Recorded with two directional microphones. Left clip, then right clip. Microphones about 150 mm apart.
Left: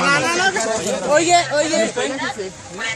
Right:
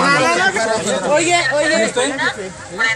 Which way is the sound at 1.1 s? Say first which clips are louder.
Left 1 dB; 35° left (ahead or behind).